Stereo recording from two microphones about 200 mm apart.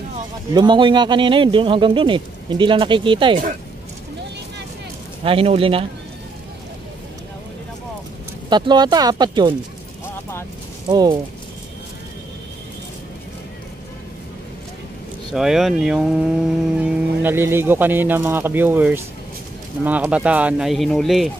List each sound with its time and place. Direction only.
0.6 s a man's voice: 25° right (ahead or behind)
5.2 s a man's voice: 30° right (ahead or behind)
8.5 s a man's voice: 20° right (ahead or behind)
10.9 s a man's voice: 20° right (ahead or behind)
15.3 s speech: centre (ahead or behind)